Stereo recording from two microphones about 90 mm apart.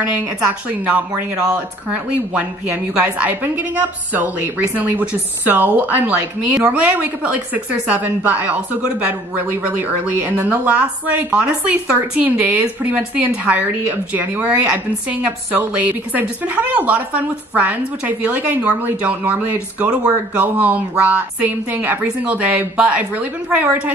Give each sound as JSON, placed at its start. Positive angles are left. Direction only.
{"t": 0.1, "sound": "speech", "side_deg": -15}